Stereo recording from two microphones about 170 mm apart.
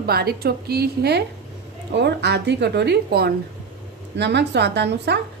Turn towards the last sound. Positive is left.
turn(degrees=-85)